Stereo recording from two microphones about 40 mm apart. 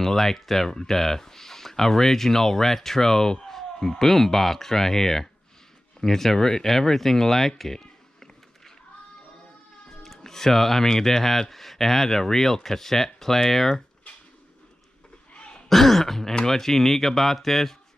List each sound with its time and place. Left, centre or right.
0.0 s speech: centre
7.8 s a sound: centre
9.8 s speech: centre
15.3 s throat clearing: left
15.7 s speech: centre